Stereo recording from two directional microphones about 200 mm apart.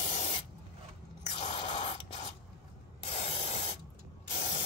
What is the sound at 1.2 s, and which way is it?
Drip, 35° left (ahead or behind).